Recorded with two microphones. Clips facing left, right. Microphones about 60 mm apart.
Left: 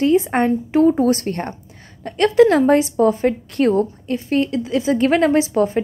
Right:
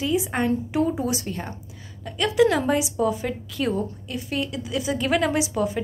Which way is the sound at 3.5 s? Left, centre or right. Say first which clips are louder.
Left 8 dB; left.